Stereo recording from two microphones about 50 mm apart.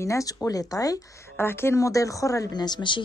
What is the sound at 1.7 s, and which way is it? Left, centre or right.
Speech, left.